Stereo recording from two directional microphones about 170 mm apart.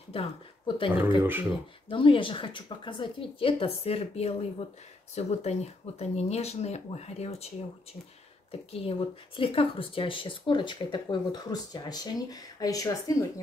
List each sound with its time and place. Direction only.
0.1 s speech: 30° left (ahead or behind)
1.2 s speech: 10° right (ahead or behind)
1.9 s a woman's voice: 30° left (ahead or behind)
9.4 s speech: 30° left (ahead or behind)